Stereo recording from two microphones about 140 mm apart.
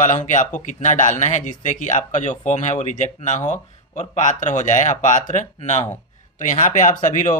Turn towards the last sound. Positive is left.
turn(degrees=65)  # may be behind; listen again after turning